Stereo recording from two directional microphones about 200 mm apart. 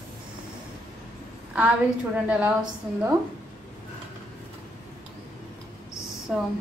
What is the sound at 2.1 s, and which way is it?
A woman's voice, 5° right (ahead or behind).